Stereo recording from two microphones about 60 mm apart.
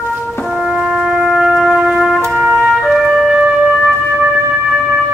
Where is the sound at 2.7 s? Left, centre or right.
Centre.